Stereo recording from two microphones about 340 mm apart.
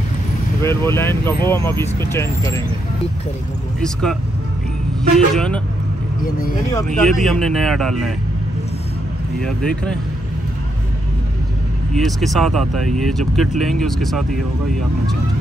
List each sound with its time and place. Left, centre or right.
0.6 s speech: centre
3.8 s speech: centre
6.7 s speech: centre
9.4 s speech: centre
11.9 s speech: centre